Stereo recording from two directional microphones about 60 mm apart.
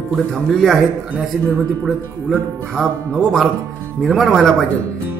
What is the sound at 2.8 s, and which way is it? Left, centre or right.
Speech, centre.